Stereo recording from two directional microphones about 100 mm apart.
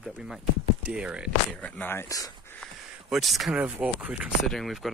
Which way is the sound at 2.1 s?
35° left (ahead or behind).